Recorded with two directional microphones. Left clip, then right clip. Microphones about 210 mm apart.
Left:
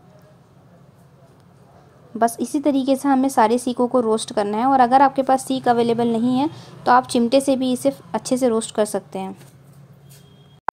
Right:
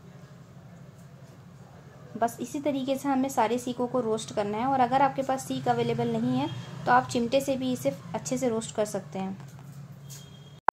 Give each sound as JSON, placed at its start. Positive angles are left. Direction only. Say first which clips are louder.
{"t": 2.1, "sound": "a woman's voice", "louder": "left 9 dB", "side_deg": 40}